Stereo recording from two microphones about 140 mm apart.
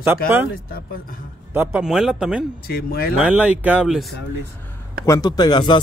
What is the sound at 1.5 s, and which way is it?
Speech, 15° right (ahead or behind).